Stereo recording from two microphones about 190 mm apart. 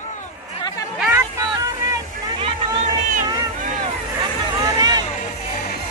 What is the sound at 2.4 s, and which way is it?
Music, 30° right (ahead or behind).